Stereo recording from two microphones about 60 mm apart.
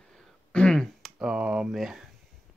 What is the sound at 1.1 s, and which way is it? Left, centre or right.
Speech, centre.